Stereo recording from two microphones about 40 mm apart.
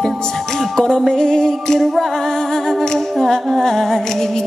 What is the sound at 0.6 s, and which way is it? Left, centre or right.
Music, centre.